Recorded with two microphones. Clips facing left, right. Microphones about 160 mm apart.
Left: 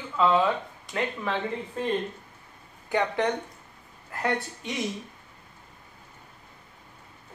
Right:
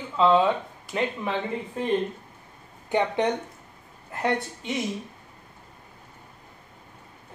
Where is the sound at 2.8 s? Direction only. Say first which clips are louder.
Right 2 dB; 20° right (ahead or behind).